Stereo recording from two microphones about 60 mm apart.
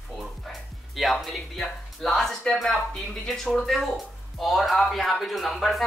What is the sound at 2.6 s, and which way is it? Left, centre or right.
Speech, centre.